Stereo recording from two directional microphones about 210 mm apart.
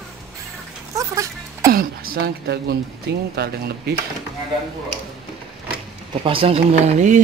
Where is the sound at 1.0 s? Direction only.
15° right (ahead or behind).